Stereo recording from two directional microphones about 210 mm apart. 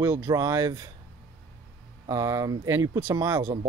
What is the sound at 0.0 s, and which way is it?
Speech, 15° right (ahead or behind).